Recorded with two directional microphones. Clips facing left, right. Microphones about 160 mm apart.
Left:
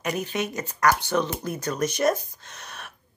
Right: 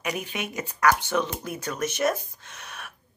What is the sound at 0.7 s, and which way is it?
Speech, 35° left (ahead or behind).